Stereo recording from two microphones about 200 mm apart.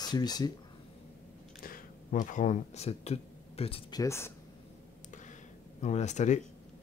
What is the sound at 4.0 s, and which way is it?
Speech, 15° left (ahead or behind).